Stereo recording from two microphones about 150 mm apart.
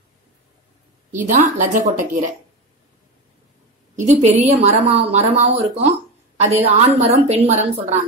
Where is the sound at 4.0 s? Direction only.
50° right (ahead or behind).